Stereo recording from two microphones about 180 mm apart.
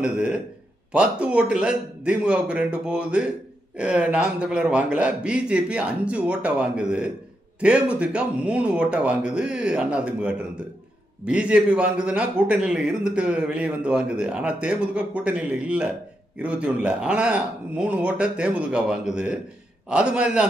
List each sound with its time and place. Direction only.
0.0 s a man's voice: 5° right (ahead or behind)